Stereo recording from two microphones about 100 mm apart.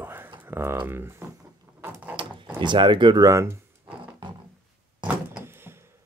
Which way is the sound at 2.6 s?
50° right (ahead or behind).